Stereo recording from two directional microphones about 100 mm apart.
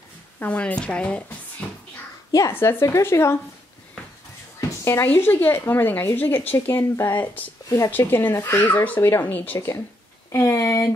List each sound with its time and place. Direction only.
0.4 s speech: 15° left (ahead or behind)
2.5 s speech: 25° left (ahead or behind)
4.6 s speech: 25° left (ahead or behind)